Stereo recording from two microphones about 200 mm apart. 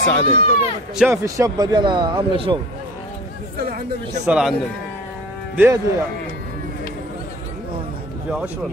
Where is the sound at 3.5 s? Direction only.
50° right (ahead or behind).